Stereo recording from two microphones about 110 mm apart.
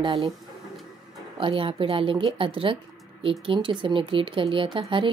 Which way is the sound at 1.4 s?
55° right (ahead or behind).